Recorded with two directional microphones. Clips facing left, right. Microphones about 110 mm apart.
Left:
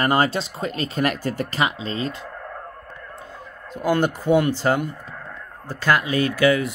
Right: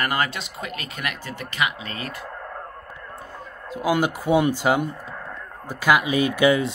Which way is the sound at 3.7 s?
5° right (ahead or behind).